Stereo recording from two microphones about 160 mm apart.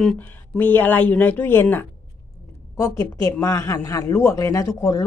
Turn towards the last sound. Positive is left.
turn(degrees=20)  # may be behind; listen again after turning